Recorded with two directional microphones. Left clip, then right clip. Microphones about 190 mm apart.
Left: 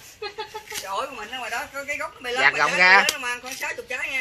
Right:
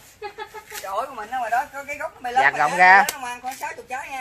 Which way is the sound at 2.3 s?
40° right (ahead or behind).